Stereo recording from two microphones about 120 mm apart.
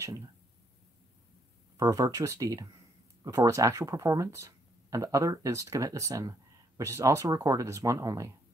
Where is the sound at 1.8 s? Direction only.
30° right (ahead or behind).